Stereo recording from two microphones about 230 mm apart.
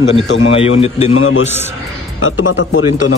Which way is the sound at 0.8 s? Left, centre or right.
Left.